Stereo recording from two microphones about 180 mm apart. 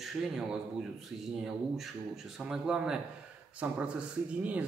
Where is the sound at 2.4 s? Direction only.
5° right (ahead or behind).